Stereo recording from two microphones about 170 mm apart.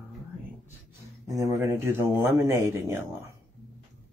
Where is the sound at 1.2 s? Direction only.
20° right (ahead or behind).